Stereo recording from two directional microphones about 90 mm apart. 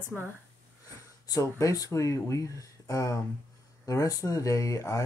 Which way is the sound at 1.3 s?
40° left (ahead or behind).